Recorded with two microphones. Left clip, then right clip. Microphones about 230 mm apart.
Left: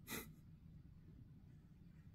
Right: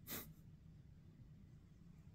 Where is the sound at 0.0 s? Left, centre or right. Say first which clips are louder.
Left 3 dB; left.